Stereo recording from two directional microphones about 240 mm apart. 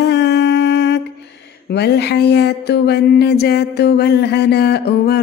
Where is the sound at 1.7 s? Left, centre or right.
Left.